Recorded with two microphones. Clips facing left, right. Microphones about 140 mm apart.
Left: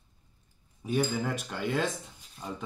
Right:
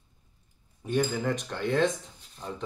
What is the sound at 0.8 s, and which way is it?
Speech, 5° left (ahead or behind).